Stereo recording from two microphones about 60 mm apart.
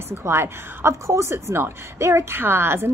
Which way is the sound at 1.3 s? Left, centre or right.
Right.